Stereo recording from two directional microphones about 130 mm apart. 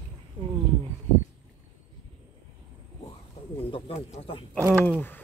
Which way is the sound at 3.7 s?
45° left (ahead or behind).